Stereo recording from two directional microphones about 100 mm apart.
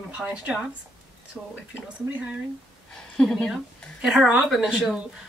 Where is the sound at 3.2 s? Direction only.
5° left (ahead or behind).